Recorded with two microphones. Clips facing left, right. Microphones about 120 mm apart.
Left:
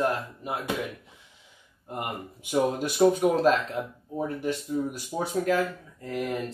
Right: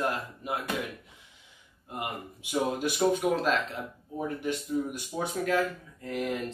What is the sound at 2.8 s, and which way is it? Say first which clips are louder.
Speech: left 5 dB; 40° left (ahead or behind).